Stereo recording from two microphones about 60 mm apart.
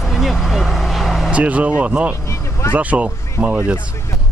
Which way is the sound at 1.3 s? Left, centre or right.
Right.